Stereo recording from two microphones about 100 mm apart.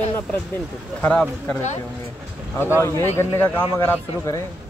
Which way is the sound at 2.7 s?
25° left (ahead or behind).